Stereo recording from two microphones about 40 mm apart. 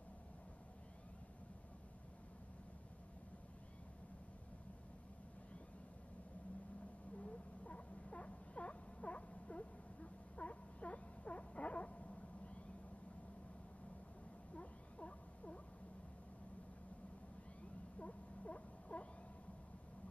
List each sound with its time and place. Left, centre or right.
7.2 s rodents: left
10.3 s a sound: left
14.5 s owl: left
17.9 s rodents: left